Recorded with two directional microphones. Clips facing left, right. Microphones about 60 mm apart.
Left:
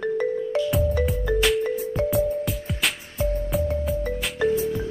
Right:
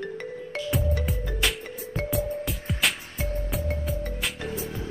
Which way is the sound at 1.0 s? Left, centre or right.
Centre.